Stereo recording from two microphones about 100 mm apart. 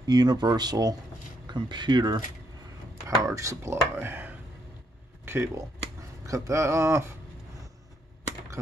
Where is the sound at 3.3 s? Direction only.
30° right (ahead or behind).